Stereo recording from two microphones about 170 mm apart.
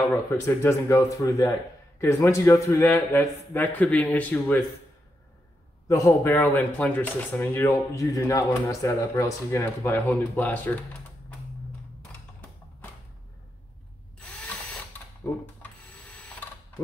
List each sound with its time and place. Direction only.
0.1 s speech: 15° left (ahead or behind)
5.9 s speech: 20° left (ahead or behind)